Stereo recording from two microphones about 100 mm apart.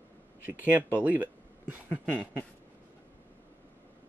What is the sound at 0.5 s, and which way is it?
Speech, 20° right (ahead or behind).